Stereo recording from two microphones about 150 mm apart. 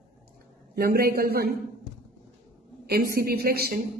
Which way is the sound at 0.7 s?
90° right.